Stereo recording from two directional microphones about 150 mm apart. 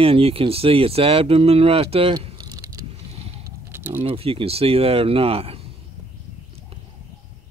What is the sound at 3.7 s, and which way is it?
Keys jangling, 15° right (ahead or behind).